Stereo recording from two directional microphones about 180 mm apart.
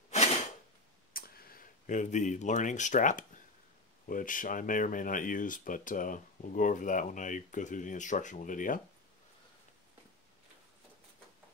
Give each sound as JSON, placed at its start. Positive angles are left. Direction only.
{"t": 1.1, "sound": "speech", "side_deg": 55}